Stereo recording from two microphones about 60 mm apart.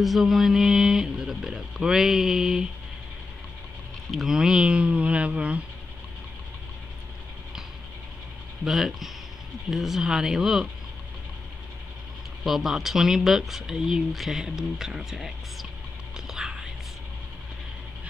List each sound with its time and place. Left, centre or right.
0.0 s speech: centre
4.1 s speech: centre; by 5.6 s right
8.6 s speech: centre
12.4 s speech: centre
16.3 s whispering: centre